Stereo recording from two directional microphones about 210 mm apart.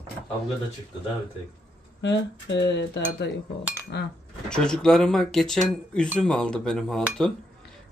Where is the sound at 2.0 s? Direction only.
55° left (ahead or behind).